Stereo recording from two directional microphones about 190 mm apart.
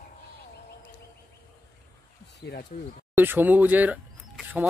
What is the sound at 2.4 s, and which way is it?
Speech, 60° left (ahead or behind).